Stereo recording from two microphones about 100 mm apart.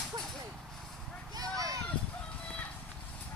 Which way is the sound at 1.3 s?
40° right (ahead or behind).